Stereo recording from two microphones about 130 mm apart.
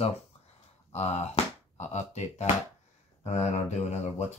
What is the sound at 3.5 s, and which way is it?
Speech, 60° left (ahead or behind).